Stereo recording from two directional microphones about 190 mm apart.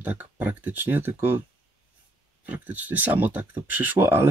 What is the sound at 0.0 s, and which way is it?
Speech, 10° right (ahead or behind).